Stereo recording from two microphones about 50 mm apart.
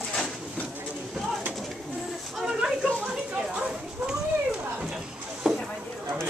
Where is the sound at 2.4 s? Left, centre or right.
Centre.